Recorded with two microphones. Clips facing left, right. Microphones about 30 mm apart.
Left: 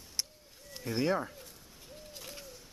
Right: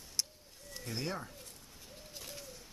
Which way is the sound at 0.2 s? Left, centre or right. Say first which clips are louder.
Even; centre.